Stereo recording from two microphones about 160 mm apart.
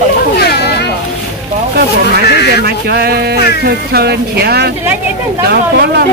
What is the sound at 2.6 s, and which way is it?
Speech, 80° right.